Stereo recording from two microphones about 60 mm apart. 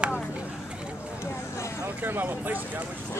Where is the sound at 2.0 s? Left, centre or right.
Right.